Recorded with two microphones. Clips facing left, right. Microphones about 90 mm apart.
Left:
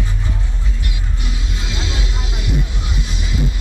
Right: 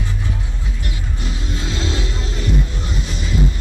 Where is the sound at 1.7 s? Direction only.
35° right (ahead or behind).